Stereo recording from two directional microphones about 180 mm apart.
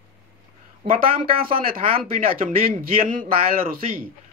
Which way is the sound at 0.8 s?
30° right (ahead or behind).